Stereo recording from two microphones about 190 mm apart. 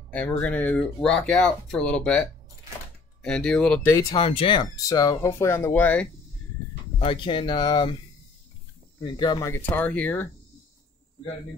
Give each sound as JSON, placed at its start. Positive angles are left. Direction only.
{"t": 0.1, "sound": "speech", "side_deg": 10}
{"t": 3.9, "sound": "speech", "side_deg": 20}
{"t": 7.0, "sound": "speech", "side_deg": 30}
{"t": 9.0, "sound": "speech", "side_deg": 25}